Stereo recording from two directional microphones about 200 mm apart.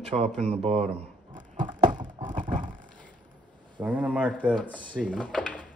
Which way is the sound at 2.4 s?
25° right (ahead or behind).